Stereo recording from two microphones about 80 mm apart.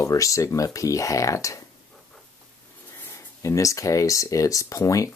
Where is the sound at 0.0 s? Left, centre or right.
Left.